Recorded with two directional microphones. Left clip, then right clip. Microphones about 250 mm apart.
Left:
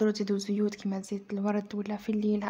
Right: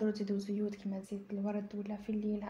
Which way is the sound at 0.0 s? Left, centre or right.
Left.